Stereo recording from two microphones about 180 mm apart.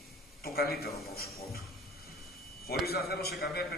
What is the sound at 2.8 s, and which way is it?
Speech, 60° left (ahead or behind).